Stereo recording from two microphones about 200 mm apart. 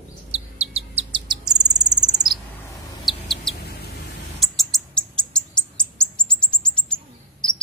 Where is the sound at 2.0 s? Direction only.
20° right (ahead or behind).